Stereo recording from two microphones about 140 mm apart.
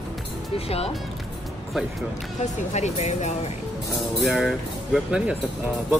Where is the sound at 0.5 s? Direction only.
45° left (ahead or behind).